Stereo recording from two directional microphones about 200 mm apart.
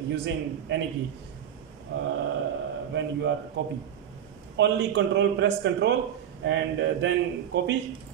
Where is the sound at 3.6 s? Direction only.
60° right (ahead or behind).